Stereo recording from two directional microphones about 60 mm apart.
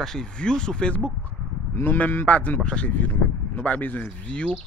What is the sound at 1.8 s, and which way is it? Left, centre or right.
Speech, left.